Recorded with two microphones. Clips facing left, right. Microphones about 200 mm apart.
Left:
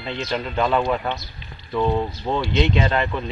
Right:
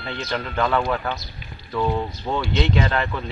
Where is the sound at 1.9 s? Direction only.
5° left (ahead or behind).